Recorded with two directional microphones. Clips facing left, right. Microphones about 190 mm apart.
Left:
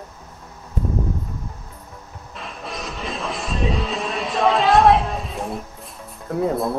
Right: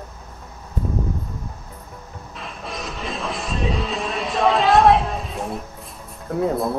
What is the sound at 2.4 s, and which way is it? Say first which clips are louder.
Music: even; centre (ahead or behind).